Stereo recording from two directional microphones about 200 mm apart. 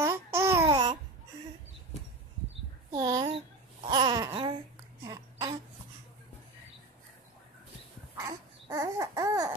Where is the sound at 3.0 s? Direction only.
20° right (ahead or behind).